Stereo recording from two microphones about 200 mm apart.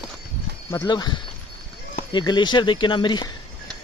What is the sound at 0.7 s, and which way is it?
Speech, 20° left (ahead or behind).